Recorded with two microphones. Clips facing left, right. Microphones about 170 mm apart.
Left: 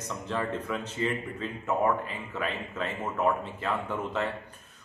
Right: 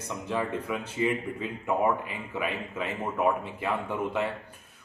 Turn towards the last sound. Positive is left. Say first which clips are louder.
# right 2 dB
turn(degrees=-10)  # may be behind; listen again after turning